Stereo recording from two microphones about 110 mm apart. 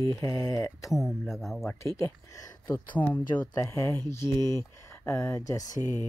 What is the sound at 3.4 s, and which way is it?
Speech, 25° left (ahead or behind).